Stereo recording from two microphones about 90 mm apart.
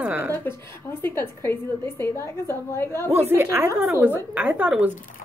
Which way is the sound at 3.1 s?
30° right (ahead or behind).